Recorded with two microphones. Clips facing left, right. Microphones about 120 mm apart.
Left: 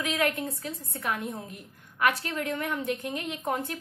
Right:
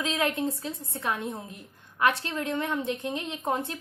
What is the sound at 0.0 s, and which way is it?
A woman's voice, 25° right (ahead or behind).